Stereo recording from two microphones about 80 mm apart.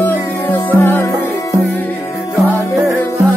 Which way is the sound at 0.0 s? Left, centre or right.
Left.